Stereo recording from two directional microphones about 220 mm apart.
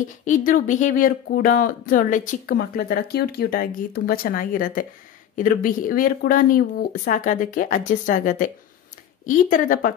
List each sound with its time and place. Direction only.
0.2 s speech: 35° left (ahead or behind)